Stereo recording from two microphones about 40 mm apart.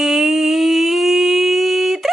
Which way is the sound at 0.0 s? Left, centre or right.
Centre.